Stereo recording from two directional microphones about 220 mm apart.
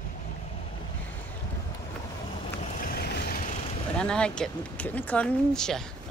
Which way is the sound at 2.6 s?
40° left (ahead or behind).